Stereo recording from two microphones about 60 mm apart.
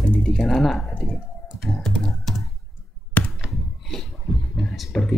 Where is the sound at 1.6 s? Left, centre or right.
Centre.